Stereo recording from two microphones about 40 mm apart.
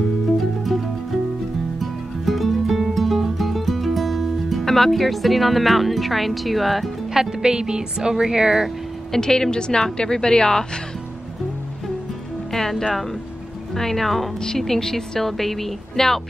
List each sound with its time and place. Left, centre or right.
1.8 s music: centre
7.2 s speech: centre
9.1 s a woman's voice: centre
12.5 s a woman's voice: centre